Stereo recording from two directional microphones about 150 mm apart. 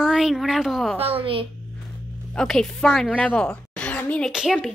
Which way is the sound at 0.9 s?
40° right (ahead or behind).